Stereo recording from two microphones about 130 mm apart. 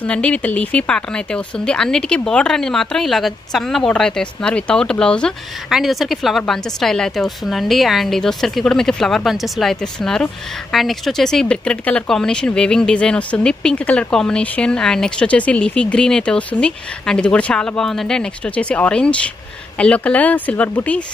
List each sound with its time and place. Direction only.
0.0 s speech: 10° left (ahead or behind)